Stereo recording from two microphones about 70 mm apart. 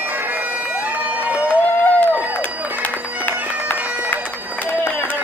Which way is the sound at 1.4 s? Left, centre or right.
Left.